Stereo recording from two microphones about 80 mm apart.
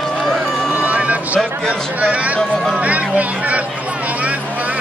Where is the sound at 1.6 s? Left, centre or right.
Centre.